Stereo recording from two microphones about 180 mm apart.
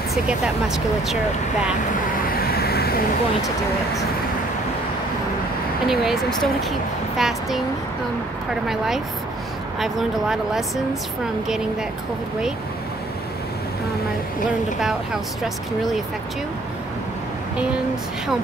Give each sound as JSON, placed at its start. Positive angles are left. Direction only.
{"t": 0.1, "sound": "speech", "side_deg": 0}
{"t": 2.3, "sound": "vehicle", "side_deg": 60}
{"t": 5.9, "sound": "speech", "side_deg": 0}
{"t": 8.6, "sound": "speech", "side_deg": 0}